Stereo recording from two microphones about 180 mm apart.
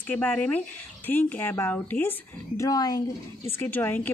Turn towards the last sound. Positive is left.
turn(degrees=10)  # may be behind; listen again after turning